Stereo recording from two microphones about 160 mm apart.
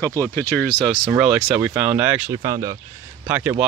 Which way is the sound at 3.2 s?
10° right (ahead or behind).